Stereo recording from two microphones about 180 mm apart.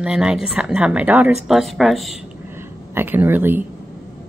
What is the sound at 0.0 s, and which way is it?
Speech, 5° right (ahead or behind).